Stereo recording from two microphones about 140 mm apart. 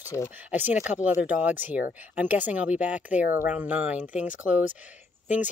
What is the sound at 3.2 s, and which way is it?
Speech, 80° left.